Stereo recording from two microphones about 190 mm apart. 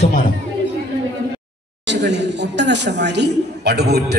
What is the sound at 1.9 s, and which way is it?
A man's voice, 65° right (ahead or behind).